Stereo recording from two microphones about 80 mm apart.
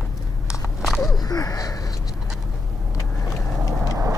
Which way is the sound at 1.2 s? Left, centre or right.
Left.